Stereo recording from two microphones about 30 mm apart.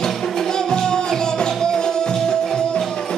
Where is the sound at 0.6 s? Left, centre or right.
Left.